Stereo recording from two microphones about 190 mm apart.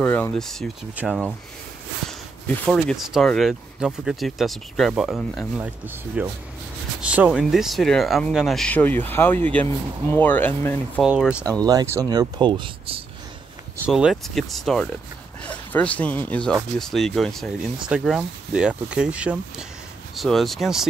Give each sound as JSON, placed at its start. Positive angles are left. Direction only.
{"t": 0.0, "sound": "speech", "side_deg": 10}
{"t": 5.6, "sound": "speech", "side_deg": -10}
{"t": 11.0, "sound": "speech", "side_deg": -5}
{"t": 11.6, "sound": "speech", "side_deg": -15}
{"t": 13.8, "sound": "speech", "side_deg": -5}